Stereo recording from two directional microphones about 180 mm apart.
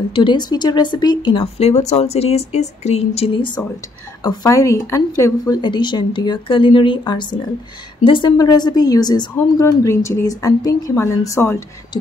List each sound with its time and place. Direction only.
0.1 s a woman's voice: 25° left (ahead or behind)